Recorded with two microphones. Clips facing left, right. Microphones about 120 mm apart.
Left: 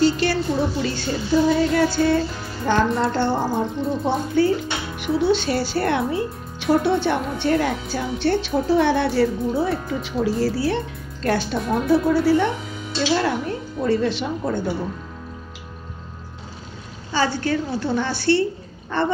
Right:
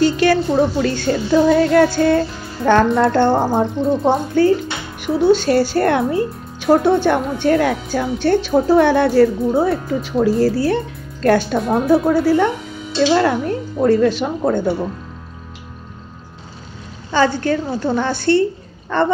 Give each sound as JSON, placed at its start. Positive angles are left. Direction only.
{"t": 0.0, "sound": "music", "side_deg": -50}
{"t": 5.0, "sound": "speech", "side_deg": -45}
{"t": 13.1, "sound": "speech", "side_deg": -60}
{"t": 17.1, "sound": "speech", "side_deg": -50}